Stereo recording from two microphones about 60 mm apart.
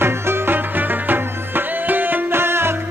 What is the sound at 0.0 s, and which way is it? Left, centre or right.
Music, right.